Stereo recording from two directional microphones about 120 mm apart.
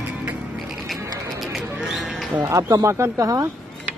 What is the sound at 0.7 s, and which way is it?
Music, centre (ahead or behind).